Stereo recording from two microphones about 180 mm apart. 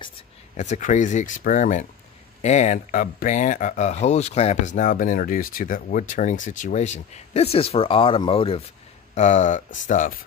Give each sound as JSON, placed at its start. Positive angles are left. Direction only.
{"t": 0.6, "sound": "speech", "side_deg": 40}